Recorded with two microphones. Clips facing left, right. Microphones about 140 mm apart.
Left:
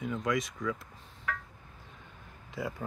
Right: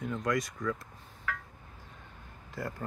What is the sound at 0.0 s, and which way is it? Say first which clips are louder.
Speech: even; centre (ahead or behind).